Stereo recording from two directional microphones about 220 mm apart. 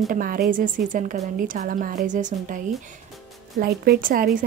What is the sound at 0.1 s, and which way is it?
A woman's voice, 40° right (ahead or behind).